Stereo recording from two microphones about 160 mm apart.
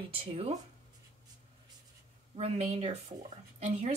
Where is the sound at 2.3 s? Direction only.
40° right (ahead or behind).